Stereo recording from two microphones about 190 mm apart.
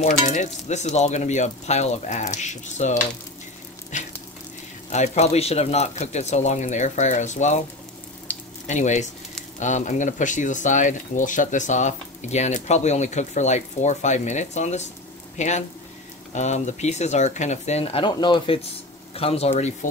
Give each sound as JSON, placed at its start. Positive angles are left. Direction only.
{"t": 0.0, "sound": "speech", "side_deg": 40}
{"t": 3.9, "sound": "frying", "side_deg": 40}
{"t": 4.9, "sound": "speech", "side_deg": 35}
{"t": 8.3, "sound": "frying", "side_deg": 10}
{"t": 8.6, "sound": "speech", "side_deg": 40}